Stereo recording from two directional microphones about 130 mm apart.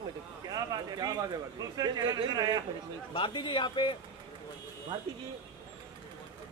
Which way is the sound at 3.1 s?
40° left (ahead or behind).